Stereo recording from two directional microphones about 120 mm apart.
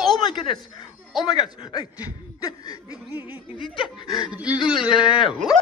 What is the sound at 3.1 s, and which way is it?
Speech, 15° right (ahead or behind).